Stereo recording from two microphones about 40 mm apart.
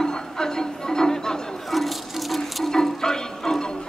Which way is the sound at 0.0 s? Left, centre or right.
Centre.